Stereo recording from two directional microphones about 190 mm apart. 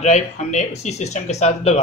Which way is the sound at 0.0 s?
35° left (ahead or behind).